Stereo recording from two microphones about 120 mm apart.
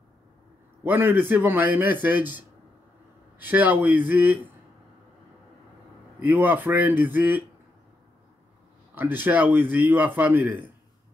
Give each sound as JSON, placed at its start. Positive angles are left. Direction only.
{"t": 0.8, "sound": "a man's voice", "side_deg": -15}
{"t": 6.2, "sound": "a man's voice", "side_deg": -15}
{"t": 8.9, "sound": "a man's voice", "side_deg": -15}